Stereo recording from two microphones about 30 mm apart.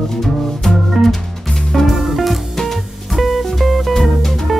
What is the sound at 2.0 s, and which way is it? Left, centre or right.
Music, centre.